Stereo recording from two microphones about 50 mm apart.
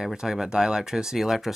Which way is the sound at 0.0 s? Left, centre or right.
Centre.